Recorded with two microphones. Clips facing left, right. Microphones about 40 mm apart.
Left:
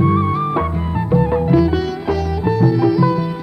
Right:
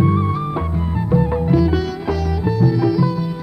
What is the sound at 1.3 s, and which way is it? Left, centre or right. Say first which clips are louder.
Sitar: left 2 dB; left.